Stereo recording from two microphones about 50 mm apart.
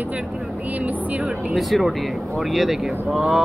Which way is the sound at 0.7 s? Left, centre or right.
Right.